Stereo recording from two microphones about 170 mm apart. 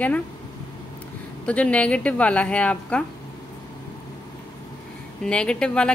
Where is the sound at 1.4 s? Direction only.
5° left (ahead or behind).